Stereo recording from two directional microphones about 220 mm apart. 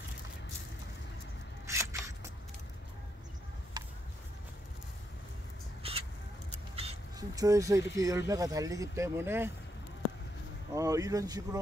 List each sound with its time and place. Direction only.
1.7 s single-lens reflex camera: 15° right (ahead or behind)
3.8 s a sound: 20° right (ahead or behind)
5.8 s a sound: 25° right (ahead or behind)
6.7 s mouse: 25° right (ahead or behind)
7.2 s speech: 15° right (ahead or behind)
10.7 s speech: 15° right (ahead or behind)